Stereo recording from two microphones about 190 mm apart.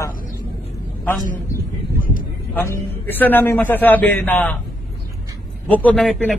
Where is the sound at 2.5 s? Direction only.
10° left (ahead or behind).